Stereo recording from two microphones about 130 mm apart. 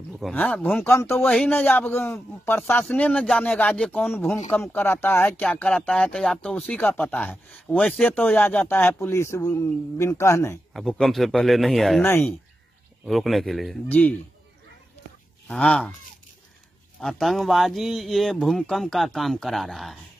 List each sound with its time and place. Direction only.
0.3 s speech: 10° left (ahead or behind)
7.8 s speech: centre (ahead or behind)
8.1 s speech: 15° left (ahead or behind)
10.7 s speech: centre (ahead or behind)
12.0 s speech: 20° left (ahead or behind)
13.0 s speech: centre (ahead or behind)
13.8 s speech: 10° left (ahead or behind)
15.5 s speech: 5° left (ahead or behind)
17.0 s speech: centre (ahead or behind)